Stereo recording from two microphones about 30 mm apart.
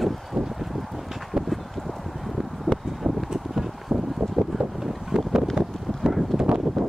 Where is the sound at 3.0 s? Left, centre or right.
Right.